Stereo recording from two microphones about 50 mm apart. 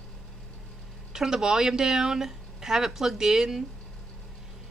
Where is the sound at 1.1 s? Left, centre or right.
Centre.